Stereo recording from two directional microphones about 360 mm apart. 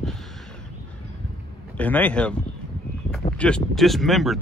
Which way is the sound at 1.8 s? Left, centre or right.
Centre.